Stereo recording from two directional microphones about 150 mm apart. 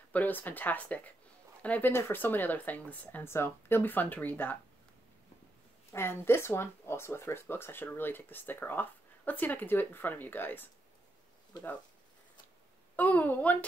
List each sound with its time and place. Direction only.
0.1 s speech: 10° left (ahead or behind)
5.9 s speech: 15° left (ahead or behind)
11.5 s speech: 30° left (ahead or behind)
12.9 s speech: 10° left (ahead or behind)